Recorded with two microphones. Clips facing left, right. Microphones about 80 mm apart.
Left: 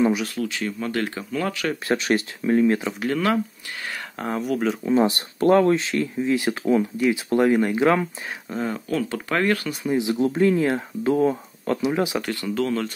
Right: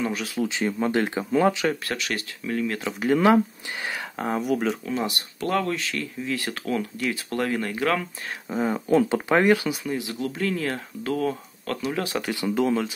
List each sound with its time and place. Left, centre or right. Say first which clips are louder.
0.4 s speech: right 2 dB; right
1.9 s speech: left 8 dB; left
2.8 s speech: left 1 dB; centre
3.1 s speech: right 4 dB; centre
4.2 s speech: even; centre
4.9 s speech: left 8 dB; left
8.5 s speech: right 2 dB; centre
8.7 s speech: right 5 dB; right
9.8 s speech: left 7 dB; left
12.2 s speech: right 1 dB; centre